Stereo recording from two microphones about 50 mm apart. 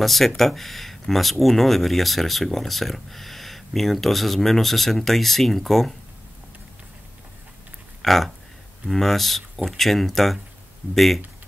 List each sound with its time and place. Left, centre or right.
0.0 s speech: centre
8.0 s speech: centre